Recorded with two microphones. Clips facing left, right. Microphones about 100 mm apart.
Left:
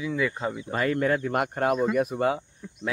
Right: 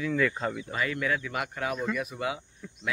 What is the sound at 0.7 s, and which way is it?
Speech, 45° left (ahead or behind).